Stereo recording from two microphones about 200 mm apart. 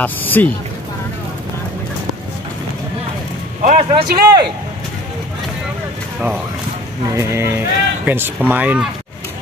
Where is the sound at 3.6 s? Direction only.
35° right (ahead or behind).